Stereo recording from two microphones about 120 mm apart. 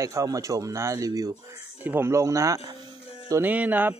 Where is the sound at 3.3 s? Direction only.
15° right (ahead or behind).